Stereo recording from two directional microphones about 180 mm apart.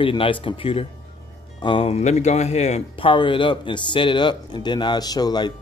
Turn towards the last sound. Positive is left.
turn(degrees=20)  # may be behind; listen again after turning